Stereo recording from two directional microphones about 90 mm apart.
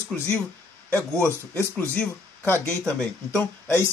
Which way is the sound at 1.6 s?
20° left (ahead or behind).